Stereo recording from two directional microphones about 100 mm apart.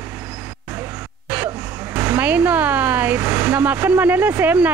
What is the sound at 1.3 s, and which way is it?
Speech, 15° right (ahead or behind).